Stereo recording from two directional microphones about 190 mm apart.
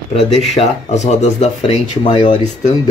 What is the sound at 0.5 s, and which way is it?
Speech, 35° left (ahead or behind).